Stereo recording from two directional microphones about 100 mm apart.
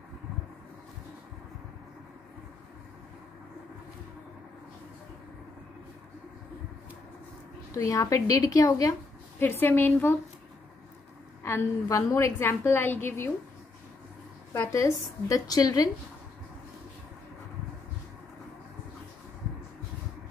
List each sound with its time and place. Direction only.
7.7 s a woman's voice: 35° left (ahead or behind)
9.4 s a woman's voice: 20° left (ahead or behind)
11.4 s a woman's voice: 30° left (ahead or behind)
14.5 s a woman's voice: 30° left (ahead or behind)